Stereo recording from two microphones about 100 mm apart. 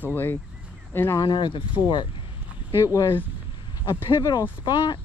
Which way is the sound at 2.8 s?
30° left (ahead or behind).